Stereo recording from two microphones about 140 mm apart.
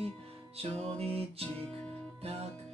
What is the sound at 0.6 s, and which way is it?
Music, 45° right (ahead or behind).